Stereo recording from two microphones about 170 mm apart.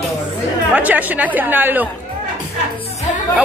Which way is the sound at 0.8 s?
10° right (ahead or behind).